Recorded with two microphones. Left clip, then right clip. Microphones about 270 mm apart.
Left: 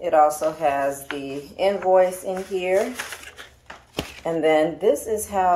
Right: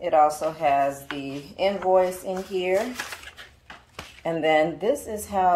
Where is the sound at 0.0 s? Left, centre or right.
Right.